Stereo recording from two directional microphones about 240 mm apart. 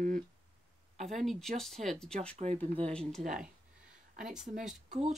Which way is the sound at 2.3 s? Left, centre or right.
Right.